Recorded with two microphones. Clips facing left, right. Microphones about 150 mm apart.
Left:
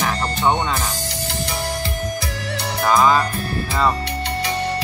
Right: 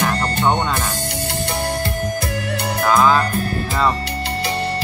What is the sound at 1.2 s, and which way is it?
Music, 55° right (ahead or behind).